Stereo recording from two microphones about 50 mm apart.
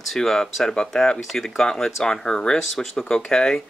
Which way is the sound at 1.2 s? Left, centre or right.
Centre.